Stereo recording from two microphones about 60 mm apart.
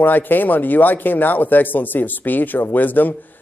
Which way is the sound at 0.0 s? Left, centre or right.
Left.